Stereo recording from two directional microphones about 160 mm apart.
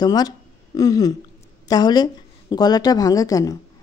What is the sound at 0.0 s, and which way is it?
Speech, 25° left (ahead or behind).